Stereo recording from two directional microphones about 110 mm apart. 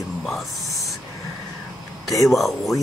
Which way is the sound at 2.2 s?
Centre (ahead or behind).